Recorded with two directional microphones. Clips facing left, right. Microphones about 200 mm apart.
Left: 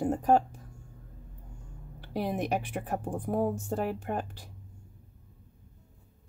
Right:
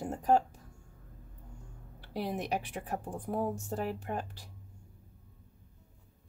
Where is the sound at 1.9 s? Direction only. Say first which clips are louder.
Left 4 dB; 50° left (ahead or behind).